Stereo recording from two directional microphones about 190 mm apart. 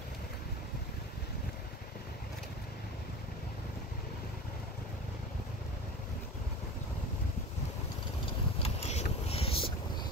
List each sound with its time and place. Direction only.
8.6 s vehicle: 35° left (ahead or behind)